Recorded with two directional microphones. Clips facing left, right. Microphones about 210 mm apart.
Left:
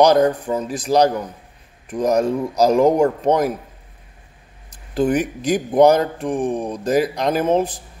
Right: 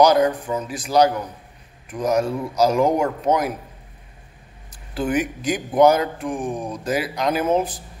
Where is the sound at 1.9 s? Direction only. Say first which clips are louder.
Left 3 dB; 40° left (ahead or behind).